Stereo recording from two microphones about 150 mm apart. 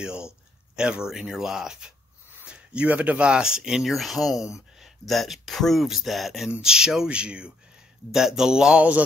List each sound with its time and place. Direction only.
0.0 s speech: 5° right (ahead or behind)
4.4 s speech: 20° left (ahead or behind)
5.0 s speech: centre (ahead or behind)